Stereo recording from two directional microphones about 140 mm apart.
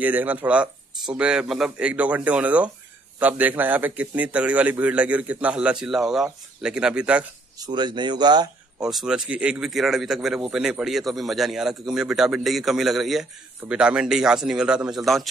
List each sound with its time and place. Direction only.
0.0 s a man's voice: 10° right (ahead or behind)
7.5 s speech: 30° right (ahead or behind)
8.7 s a man's voice: 5° right (ahead or behind)